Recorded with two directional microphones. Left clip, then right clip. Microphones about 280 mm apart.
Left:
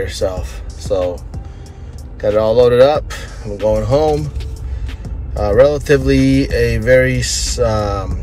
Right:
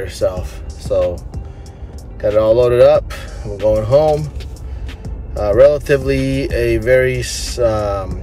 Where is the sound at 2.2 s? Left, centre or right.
Centre.